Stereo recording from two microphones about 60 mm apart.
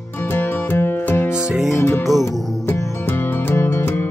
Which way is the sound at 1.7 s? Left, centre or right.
Left.